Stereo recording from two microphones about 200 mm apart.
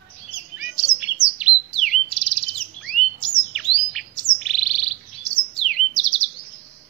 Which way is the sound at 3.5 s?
Centre (ahead or behind).